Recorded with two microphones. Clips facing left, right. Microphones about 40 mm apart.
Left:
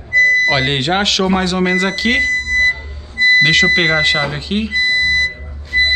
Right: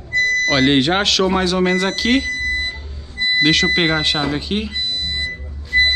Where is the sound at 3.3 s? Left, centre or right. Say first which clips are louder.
Left 2 dB; centre.